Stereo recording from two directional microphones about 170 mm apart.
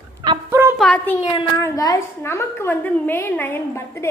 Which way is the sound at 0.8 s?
5° left (ahead or behind).